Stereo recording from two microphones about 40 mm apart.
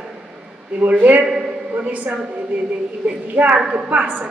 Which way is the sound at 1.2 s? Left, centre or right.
Centre.